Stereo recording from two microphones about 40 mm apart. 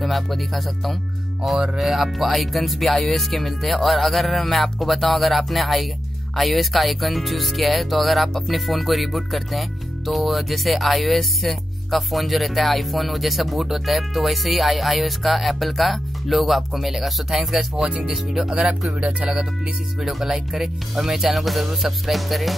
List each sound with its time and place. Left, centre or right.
0.0 s speech: centre
17.8 s speech: right
18.1 s speech: centre
18.9 s speech: right
19.3 s speech: centre